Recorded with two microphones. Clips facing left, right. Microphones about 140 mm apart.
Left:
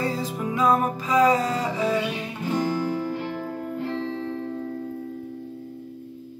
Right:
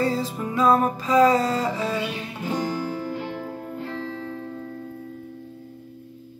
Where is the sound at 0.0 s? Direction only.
15° left (ahead or behind).